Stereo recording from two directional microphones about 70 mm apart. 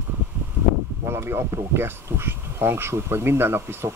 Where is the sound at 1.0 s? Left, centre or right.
Right.